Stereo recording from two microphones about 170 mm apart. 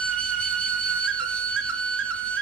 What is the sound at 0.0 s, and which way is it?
Flute, 5° left (ahead or behind).